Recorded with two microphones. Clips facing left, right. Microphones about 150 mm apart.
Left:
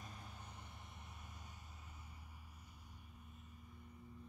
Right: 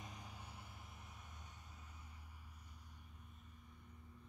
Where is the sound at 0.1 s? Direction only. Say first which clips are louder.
Even; 10° right (ahead or behind).